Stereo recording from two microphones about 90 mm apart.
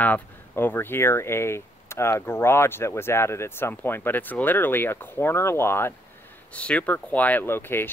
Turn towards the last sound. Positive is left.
turn(degrees=25)  # may be behind; listen again after turning